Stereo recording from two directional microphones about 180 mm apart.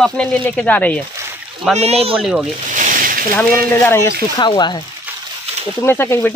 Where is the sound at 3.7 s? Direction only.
15° left (ahead or behind).